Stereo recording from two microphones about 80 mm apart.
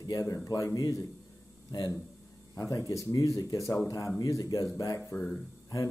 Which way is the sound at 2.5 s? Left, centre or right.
Left.